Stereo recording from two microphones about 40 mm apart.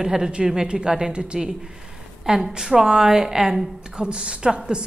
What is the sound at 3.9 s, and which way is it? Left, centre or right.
Speech, right.